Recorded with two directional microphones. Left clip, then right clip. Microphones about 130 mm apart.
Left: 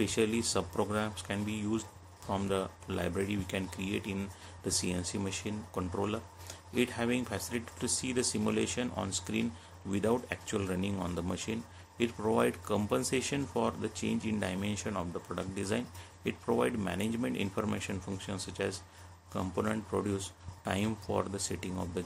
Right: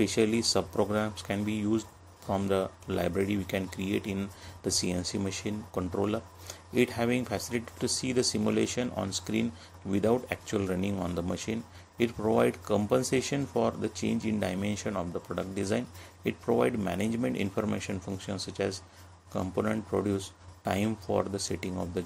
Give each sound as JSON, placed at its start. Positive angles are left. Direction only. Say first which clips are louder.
{"t": 0.0, "sound": "speech", "louder": "right 4 dB", "side_deg": -30}